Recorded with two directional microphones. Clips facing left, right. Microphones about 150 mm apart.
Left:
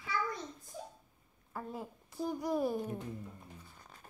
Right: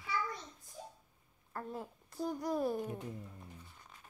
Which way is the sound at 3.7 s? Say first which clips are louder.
Left 2 dB; 40° left (ahead or behind).